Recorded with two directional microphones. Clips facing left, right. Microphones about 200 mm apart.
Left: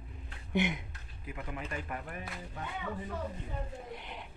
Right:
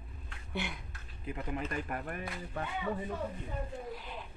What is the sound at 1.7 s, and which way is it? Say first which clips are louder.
Speech: right 2 dB; 50° right (ahead or behind).